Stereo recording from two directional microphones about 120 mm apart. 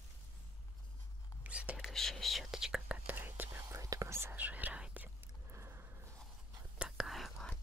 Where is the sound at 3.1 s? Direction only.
15° right (ahead or behind).